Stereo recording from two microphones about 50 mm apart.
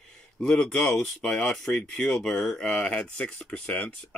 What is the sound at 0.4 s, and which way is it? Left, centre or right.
Speech, centre.